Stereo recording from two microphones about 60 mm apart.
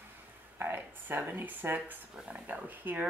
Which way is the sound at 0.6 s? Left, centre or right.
Right.